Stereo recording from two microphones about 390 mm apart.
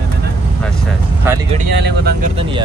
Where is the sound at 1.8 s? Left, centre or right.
Right.